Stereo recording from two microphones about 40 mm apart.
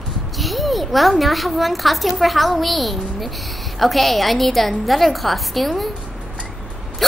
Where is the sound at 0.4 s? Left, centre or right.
Centre.